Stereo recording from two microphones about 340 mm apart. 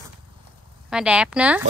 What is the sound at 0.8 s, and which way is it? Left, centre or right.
Speech, centre.